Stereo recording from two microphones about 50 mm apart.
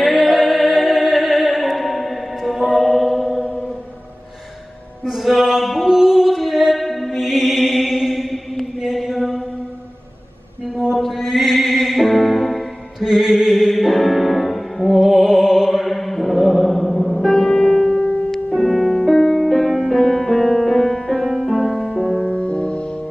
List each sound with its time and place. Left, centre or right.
0.0 s music: centre
5.0 s music: centre
8.7 s chant: centre
11.0 s music: centre
21.7 s music: centre